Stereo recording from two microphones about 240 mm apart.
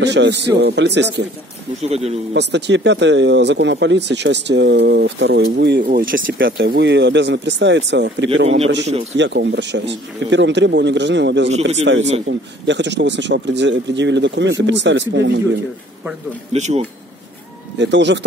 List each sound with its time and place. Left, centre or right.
0.0 s speech: right
1.8 s speech: right
2.3 s speech: right
6.1 s speech: right
16.5 s speech: right
17.7 s speech: right